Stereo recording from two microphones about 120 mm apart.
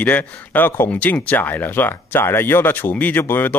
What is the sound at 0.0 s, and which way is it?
Speech, 15° left (ahead or behind).